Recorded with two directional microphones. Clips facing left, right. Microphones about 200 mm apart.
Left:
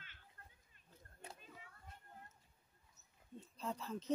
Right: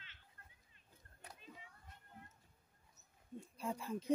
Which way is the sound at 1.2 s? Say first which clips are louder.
Left 3 dB; 25° left (ahead or behind).